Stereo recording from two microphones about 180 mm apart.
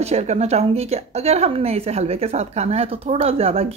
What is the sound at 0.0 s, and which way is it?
A woman's voice, 35° right (ahead or behind).